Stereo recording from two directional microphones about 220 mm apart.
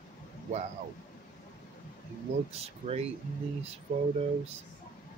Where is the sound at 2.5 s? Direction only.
25° right (ahead or behind).